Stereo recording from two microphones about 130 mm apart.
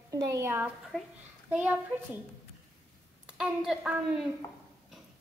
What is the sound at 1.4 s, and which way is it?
Speech, 10° right (ahead or behind).